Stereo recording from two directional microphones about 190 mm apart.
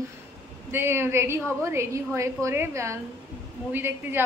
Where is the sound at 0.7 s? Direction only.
10° right (ahead or behind).